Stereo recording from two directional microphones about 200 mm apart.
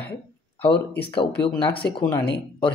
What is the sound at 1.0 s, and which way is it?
Speech, 25° left (ahead or behind).